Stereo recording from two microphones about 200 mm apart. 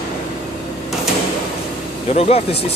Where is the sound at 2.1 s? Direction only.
30° left (ahead or behind).